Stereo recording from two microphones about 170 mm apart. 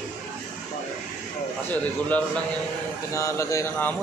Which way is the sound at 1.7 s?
10° left (ahead or behind).